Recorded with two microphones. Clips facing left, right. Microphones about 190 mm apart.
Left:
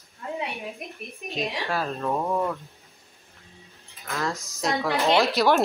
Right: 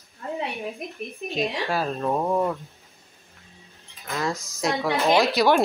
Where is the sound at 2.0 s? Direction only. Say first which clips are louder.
Right 3 dB; 15° right (ahead or behind).